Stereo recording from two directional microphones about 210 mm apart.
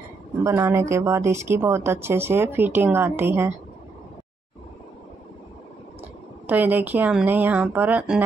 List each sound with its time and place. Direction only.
0.4 s speech: 15° right (ahead or behind)
6.4 s speech: 10° right (ahead or behind)